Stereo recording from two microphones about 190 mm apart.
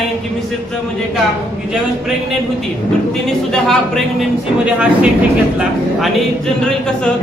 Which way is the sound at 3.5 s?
5° left (ahead or behind).